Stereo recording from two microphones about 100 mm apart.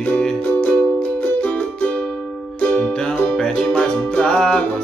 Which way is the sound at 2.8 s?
10° left (ahead or behind).